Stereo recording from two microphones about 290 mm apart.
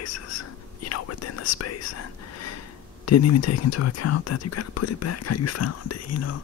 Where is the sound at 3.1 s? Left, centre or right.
Left.